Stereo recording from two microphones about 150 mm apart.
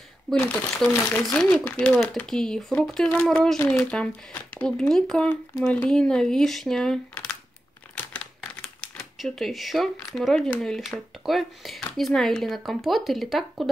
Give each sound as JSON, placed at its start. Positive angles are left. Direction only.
{"t": 0.3, "sound": "speech", "side_deg": 5}
{"t": 3.5, "sound": "speech", "side_deg": 20}
{"t": 3.8, "sound": "speech", "side_deg": 5}
{"t": 7.9, "sound": "crumpling", "side_deg": 10}
{"t": 8.4, "sound": "speech", "side_deg": 5}